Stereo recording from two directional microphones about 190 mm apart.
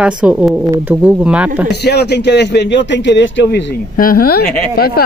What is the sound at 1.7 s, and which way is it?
Speech, 60° left (ahead or behind).